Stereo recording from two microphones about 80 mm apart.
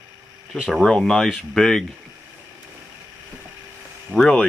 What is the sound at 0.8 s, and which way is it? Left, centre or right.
Speech, centre.